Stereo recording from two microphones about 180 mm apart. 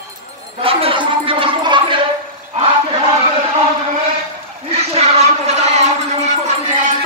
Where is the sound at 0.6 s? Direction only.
30° right (ahead or behind).